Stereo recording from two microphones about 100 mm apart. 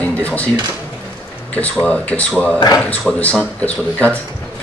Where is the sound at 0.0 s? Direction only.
15° left (ahead or behind).